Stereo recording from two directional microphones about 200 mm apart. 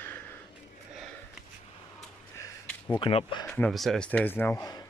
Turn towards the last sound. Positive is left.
turn(degrees=15)  # may be behind; listen again after turning